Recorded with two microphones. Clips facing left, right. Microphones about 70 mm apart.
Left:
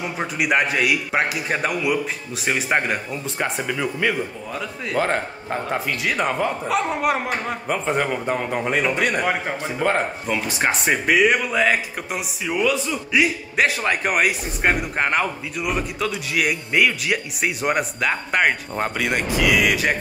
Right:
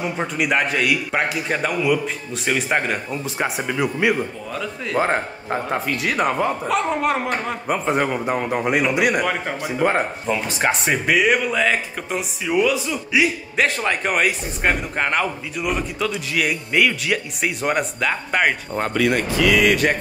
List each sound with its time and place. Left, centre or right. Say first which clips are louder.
0.0 s a man's voice: right 2 dB; centre
5.5 s speech: right 2 dB; centre
7.6 s a man's voice: right 2 dB; centre
10.3 s speech: right 1 dB; centre
18.9 s speech: right 5 dB; centre